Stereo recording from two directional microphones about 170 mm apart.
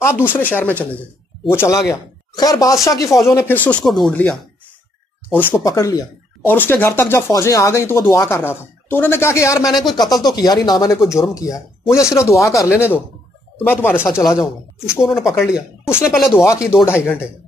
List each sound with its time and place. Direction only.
0.0 s speech: 15° left (ahead or behind)
14.3 s speech: 5° right (ahead or behind)
16.4 s speech: 15° left (ahead or behind)